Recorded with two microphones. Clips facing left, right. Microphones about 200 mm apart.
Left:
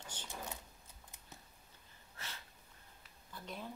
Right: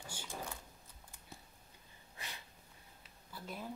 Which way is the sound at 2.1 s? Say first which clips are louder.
Right 1 dB; 15° right (ahead or behind).